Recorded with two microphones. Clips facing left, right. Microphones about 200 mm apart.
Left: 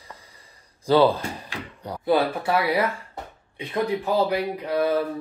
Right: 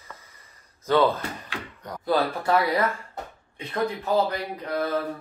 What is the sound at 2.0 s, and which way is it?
Speech, 10° left (ahead or behind).